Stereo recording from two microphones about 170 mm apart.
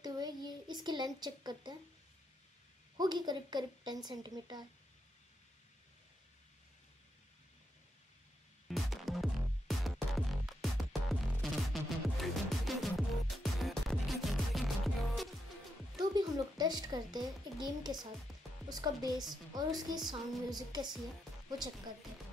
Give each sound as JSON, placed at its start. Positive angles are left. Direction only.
{"t": 0.0, "sound": "a sound", "side_deg": -25}
{"t": 3.0, "sound": "a woman's voice", "side_deg": -25}
{"t": 8.6, "sound": "music", "side_deg": 0}
{"t": 16.0, "sound": "a woman's voice", "side_deg": -25}